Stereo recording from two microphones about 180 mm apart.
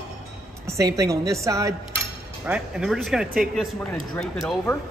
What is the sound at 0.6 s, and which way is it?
A woman's voice, 15° right (ahead or behind).